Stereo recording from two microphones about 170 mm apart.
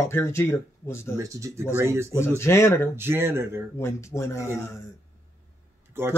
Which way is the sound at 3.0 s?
15° right (ahead or behind).